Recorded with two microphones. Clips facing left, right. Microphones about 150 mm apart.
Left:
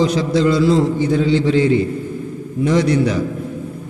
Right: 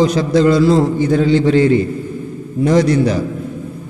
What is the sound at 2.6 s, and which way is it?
Speech, 40° right (ahead or behind).